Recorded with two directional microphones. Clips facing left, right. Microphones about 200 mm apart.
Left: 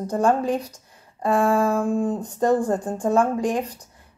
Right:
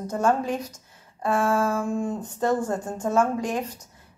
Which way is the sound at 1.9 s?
35° left (ahead or behind).